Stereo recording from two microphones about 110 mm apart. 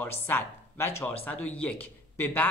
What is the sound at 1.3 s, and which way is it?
Speech, 10° left (ahead or behind).